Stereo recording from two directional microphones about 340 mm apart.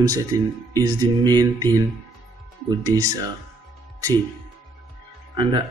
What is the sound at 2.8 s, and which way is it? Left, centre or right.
Speech, centre.